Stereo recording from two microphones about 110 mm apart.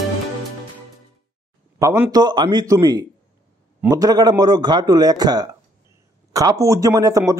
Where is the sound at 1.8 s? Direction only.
30° right (ahead or behind).